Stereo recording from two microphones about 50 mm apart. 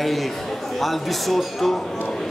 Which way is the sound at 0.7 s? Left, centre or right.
Centre.